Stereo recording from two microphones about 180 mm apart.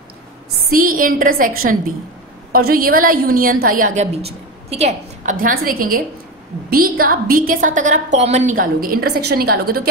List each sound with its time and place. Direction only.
0.7 s a woman's voice: 50° right (ahead or behind)